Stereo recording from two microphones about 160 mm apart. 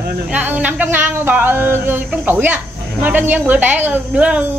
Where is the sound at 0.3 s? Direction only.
10° right (ahead or behind).